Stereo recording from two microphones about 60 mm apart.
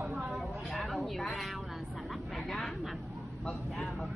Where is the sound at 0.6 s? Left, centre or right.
Centre.